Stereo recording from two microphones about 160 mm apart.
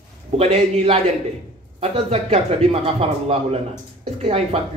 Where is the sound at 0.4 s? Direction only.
40° right (ahead or behind).